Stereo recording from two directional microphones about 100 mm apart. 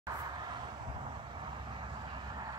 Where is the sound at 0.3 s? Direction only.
45° right (ahead or behind).